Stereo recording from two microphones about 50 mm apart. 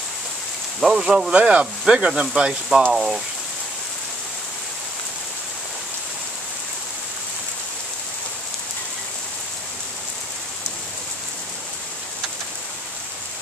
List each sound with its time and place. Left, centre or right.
0.7 s speech: centre
2.9 s speech: centre